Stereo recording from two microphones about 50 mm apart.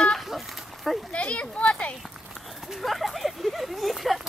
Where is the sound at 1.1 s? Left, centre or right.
Left.